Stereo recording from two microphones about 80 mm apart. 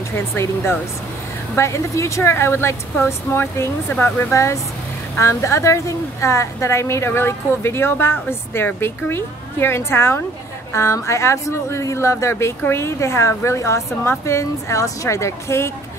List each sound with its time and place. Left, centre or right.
1.5 s a woman's voice: left